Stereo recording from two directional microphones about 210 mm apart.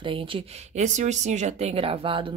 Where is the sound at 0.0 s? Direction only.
25° right (ahead or behind).